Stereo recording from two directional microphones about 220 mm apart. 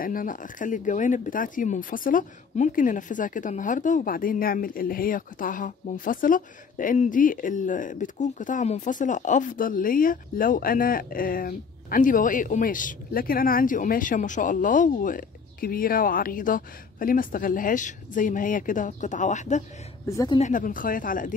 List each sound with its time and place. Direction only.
0.0 s speech: 40° left (ahead or behind)
20.1 s speech: 15° left (ahead or behind)
20.3 s speech: 35° left (ahead or behind)